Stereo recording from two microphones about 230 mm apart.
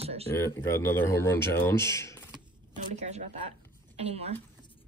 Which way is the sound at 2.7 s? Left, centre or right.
Right.